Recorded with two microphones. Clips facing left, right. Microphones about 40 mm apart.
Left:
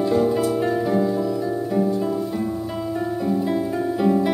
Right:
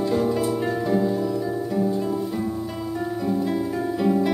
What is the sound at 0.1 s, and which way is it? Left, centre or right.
Music, centre.